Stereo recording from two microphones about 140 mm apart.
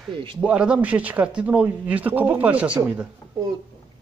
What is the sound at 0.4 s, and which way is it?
Speech, 5° right (ahead or behind).